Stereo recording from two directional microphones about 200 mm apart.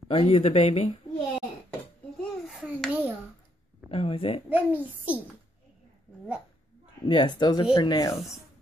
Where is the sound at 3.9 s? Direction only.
30° left (ahead or behind).